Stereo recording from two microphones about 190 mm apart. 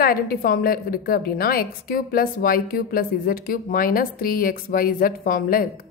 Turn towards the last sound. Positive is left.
turn(degrees=50)  # may be behind; listen again after turning